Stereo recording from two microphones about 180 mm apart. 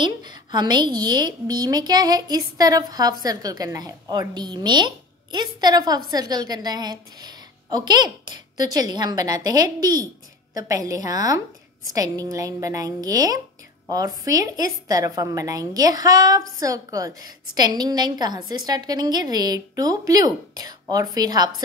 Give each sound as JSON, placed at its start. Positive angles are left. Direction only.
{"t": 0.0, "sound": "a woman's voice", "side_deg": -25}